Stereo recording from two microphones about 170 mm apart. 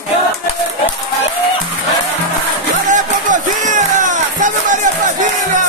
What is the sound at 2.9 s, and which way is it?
Music, 50° right (ahead or behind).